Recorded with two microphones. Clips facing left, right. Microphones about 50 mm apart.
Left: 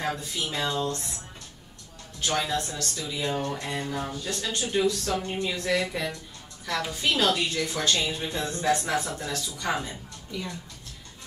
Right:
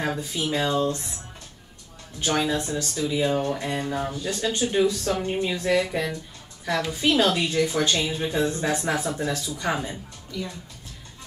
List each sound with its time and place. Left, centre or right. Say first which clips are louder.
0.0 s speech: right 3 dB; centre
2.1 s a woman's voice: right 3 dB; centre